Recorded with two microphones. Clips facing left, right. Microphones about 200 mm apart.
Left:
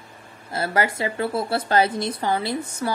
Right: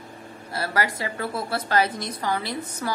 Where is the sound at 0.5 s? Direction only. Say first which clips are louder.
Left 3 dB; 25° left (ahead or behind).